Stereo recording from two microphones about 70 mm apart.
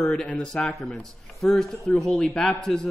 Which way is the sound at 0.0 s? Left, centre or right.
Centre.